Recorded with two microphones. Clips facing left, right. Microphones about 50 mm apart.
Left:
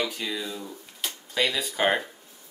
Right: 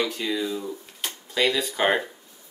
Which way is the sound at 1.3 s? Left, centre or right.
Centre.